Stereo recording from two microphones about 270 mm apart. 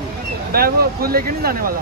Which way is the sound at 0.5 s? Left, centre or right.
Right.